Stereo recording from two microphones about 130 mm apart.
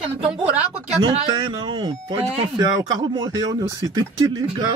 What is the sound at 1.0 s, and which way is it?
Speech, 40° right (ahead or behind).